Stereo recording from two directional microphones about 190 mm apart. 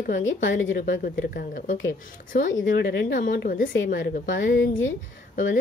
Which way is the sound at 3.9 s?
60° left (ahead or behind).